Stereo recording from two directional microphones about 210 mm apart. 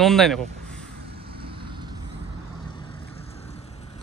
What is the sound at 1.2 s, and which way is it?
Vehicle, 25° right (ahead or behind).